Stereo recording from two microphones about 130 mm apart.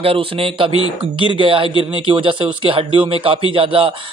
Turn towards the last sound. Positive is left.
turn(degrees=-45)  # may be behind; listen again after turning